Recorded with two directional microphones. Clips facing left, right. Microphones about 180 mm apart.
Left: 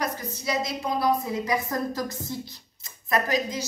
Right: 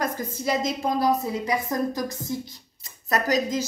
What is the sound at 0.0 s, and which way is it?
A woman's voice, 50° right (ahead or behind).